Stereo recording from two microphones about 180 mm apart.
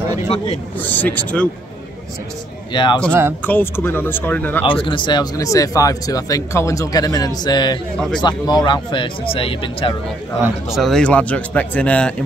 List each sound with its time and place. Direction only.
0.7 s speech: 10° left (ahead or behind)
2.7 s speech: 25° left (ahead or behind)
3.1 s speech: 15° right (ahead or behind)
3.4 s speech: 10° left (ahead or behind)
4.6 s speech: 30° left (ahead or behind)
10.4 s speech: centre (ahead or behind)